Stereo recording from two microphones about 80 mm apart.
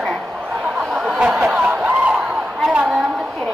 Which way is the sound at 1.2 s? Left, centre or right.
Centre.